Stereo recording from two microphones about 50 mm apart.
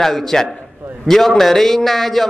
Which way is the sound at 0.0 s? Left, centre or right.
Centre.